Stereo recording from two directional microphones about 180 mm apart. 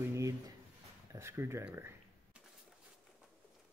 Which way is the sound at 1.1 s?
15° right (ahead or behind).